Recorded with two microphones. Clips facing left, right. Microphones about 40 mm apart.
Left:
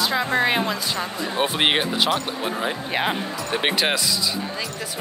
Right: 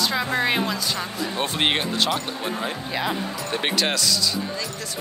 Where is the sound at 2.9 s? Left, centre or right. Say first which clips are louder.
Left 2 dB; left.